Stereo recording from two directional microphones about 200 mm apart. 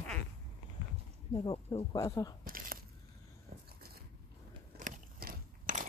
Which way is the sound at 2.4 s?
45° right (ahead or behind).